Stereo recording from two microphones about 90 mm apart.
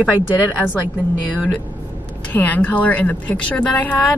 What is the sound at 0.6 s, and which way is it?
Speech, 15° left (ahead or behind).